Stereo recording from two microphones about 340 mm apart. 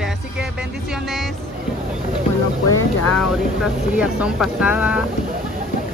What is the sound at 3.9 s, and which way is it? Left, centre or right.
Speech, centre.